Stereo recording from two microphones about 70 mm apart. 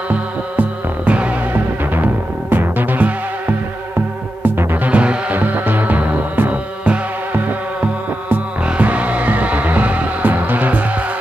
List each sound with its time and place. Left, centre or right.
0.1 s music: centre